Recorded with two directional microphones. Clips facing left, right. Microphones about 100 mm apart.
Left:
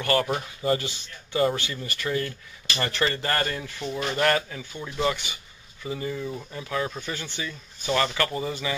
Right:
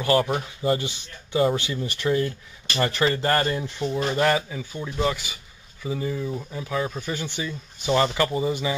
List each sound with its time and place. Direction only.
0.1 s a man's voice: 10° right (ahead or behind)